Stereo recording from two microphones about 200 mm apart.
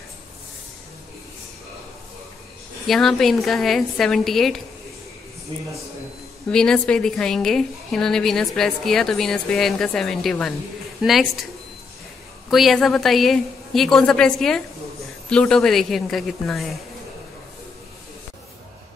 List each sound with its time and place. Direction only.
2.9 s a woman's voice: centre (ahead or behind)
5.5 s a man's voice: 25° right (ahead or behind)
6.5 s a woman's voice: 5° left (ahead or behind)
12.4 s a woman's voice: centre (ahead or behind)